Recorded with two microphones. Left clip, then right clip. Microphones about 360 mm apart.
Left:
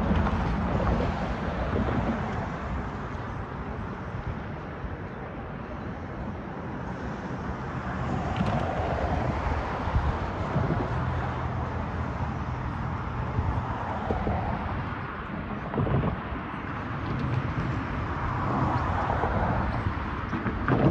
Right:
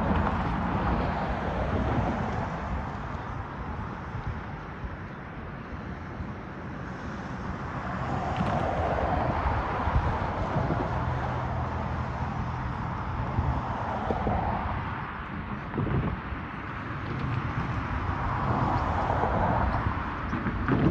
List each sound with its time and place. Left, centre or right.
0.1 s vehicle: centre
1.9 s thunder: right
8.1 s thunder: right
8.5 s a sound: right
18.4 s vehicle: right
20.3 s vehicle: centre